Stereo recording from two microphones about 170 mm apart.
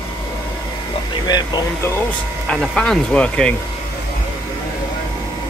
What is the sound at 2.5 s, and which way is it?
Speech, centre (ahead or behind).